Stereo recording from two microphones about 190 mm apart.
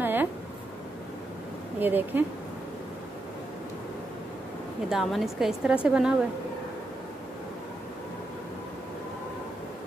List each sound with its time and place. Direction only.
0.0 s a sound: 10° right (ahead or behind)
1.8 s speech: 10° right (ahead or behind)
4.8 s a woman's voice: centre (ahead or behind)